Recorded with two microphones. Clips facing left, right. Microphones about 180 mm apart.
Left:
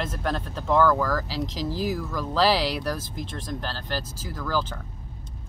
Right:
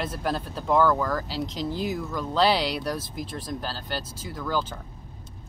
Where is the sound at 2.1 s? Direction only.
Centre (ahead or behind).